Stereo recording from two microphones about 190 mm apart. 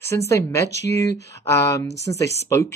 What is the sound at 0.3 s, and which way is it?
Speech, 15° left (ahead or behind).